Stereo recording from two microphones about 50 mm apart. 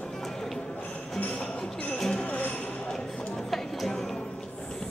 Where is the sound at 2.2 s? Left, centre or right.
Left.